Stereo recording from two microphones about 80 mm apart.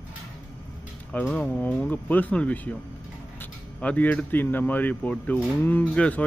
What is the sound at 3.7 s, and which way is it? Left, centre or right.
Speech, centre.